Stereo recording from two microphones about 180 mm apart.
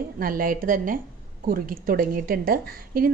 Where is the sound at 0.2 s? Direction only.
50° right (ahead or behind).